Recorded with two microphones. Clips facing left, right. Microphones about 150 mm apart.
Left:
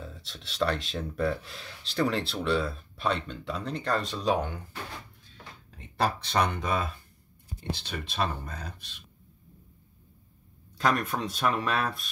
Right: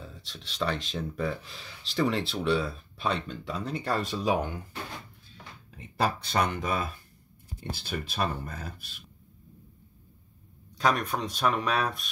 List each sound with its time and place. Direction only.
0.0 s speech: centre (ahead or behind)
5.8 s speech: 5° right (ahead or behind)
10.8 s speech: centre (ahead or behind)